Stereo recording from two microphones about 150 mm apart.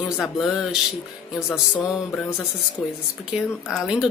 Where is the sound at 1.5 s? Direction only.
20° left (ahead or behind).